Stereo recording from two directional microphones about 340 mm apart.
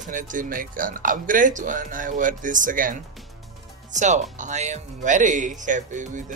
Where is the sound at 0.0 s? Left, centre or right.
Right.